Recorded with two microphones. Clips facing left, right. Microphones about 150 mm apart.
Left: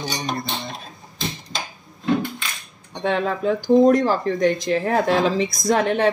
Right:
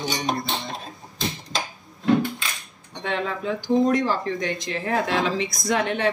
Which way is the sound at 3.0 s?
40° left (ahead or behind).